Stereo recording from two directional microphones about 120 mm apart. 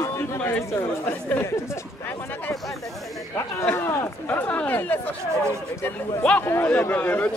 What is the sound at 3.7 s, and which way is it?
Speech, 15° left (ahead or behind).